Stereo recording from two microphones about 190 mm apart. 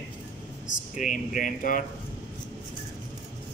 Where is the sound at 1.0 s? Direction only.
40° left (ahead or behind).